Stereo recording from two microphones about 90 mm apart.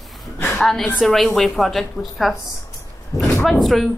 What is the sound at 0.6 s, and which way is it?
A woman's voice, 5° left (ahead or behind).